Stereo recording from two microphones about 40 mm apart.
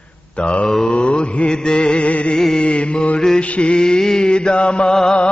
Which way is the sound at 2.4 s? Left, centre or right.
Centre.